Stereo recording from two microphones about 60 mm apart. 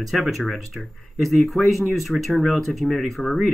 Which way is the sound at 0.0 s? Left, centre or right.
Centre.